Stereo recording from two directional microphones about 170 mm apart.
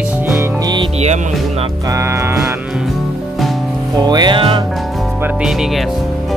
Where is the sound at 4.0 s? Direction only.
25° right (ahead or behind).